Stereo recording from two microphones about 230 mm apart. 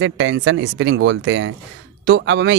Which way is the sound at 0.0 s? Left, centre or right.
Right.